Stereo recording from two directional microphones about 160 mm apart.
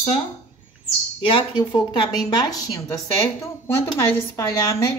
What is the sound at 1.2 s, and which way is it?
Speech, 30° left (ahead or behind).